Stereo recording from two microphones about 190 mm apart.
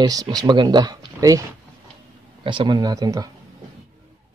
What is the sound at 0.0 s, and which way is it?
Speech, 20° right (ahead or behind).